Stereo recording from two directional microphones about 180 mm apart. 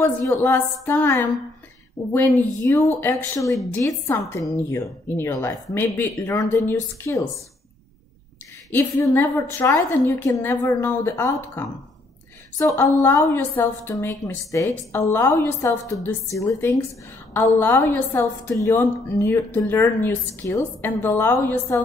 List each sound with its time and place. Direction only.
0.0 s a woman's voice: 15° left (ahead or behind)
8.7 s a woman's voice: 15° left (ahead or behind)